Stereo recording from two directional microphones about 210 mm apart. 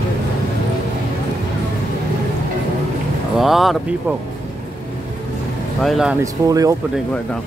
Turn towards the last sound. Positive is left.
turn(degrees=-15)  # may be behind; listen again after turning